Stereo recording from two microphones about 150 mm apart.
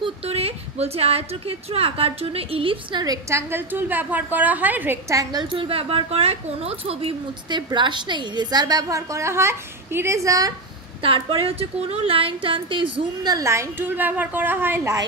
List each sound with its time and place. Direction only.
0.0 s a woman's voice: 40° right (ahead or behind); by 10.5 s 20° right (ahead or behind)
11.0 s a woman's voice: 35° right (ahead or behind); by 15.0 s 15° right (ahead or behind)